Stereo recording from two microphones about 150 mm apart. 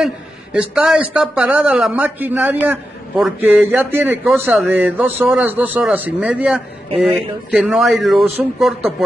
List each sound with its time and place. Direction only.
0.0 s a man's voice: 5° right (ahead or behind)
4.2 s a man's voice: centre (ahead or behind)